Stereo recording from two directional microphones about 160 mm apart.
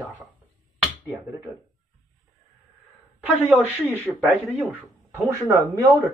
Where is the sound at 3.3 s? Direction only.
10° right (ahead or behind).